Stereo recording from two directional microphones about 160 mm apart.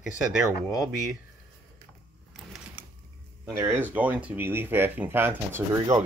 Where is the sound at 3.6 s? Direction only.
15° right (ahead or behind).